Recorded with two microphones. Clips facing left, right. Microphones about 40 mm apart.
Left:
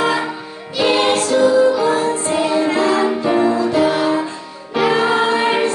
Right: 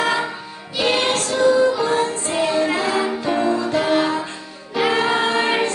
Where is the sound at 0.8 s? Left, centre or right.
Centre.